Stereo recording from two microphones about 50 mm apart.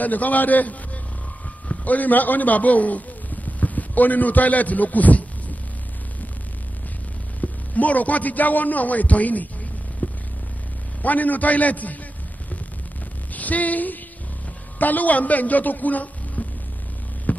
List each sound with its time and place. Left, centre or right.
0.0 s a man's voice: left
1.9 s a man's voice: left
7.4 s a man's voice: left
10.0 s a sound: left
11.0 s a man's voice: left
13.3 s a sound: left
14.8 s a woman's voice: left
17.3 s hum: left